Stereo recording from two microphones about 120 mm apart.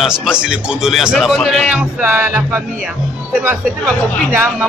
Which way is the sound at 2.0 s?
15° right (ahead or behind).